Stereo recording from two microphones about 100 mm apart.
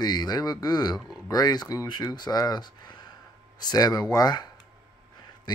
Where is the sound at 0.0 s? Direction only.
45° left (ahead or behind).